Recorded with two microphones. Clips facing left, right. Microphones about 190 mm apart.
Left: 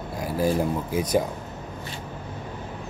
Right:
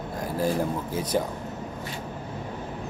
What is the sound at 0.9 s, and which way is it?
Speech, 15° left (ahead or behind).